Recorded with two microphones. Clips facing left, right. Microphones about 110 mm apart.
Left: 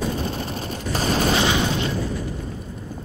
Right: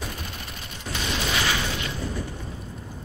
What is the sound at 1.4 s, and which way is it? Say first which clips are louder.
Explosion: left 6 dB; 25° left (ahead or behind).